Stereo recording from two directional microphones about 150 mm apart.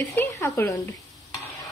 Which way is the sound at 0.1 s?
15° left (ahead or behind).